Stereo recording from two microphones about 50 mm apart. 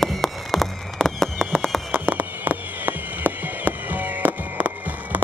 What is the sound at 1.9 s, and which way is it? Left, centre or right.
Fireworks, right.